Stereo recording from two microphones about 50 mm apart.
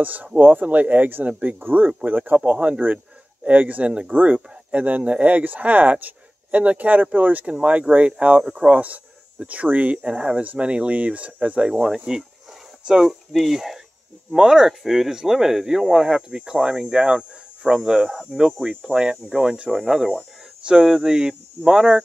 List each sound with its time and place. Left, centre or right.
0.0 s speech: right
12.0 s speech: centre
18.6 s speech: right